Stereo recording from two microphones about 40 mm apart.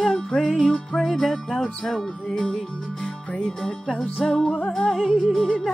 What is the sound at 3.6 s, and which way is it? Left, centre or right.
Music, centre.